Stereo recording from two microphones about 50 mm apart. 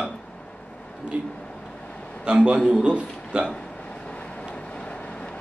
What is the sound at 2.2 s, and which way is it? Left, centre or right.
A man's voice, centre.